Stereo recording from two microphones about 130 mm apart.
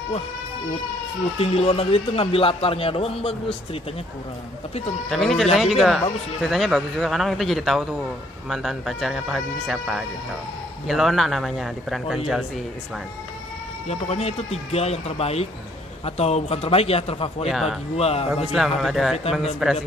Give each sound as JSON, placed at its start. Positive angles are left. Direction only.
{"t": 1.4, "sound": "a man's voice", "side_deg": 50}
{"t": 5.1, "sound": "speech", "side_deg": 5}
{"t": 13.8, "sound": "a man's voice", "side_deg": 55}
{"t": 17.5, "sound": "speech", "side_deg": 0}
{"t": 17.9, "sound": "a man's voice", "side_deg": 50}
{"t": 18.5, "sound": "speech", "side_deg": 0}